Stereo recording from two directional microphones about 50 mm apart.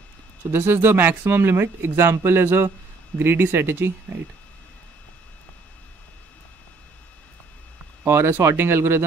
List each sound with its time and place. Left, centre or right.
0.5 s speech: right
8.1 s speech: right